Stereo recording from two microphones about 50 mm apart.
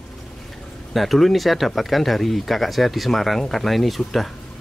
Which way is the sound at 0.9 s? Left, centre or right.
Centre.